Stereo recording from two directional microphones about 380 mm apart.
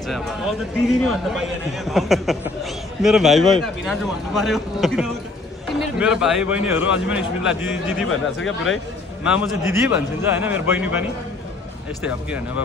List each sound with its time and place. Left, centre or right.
0.1 s a man's voice: centre
8.1 s speech: left
9.2 s a man's voice: centre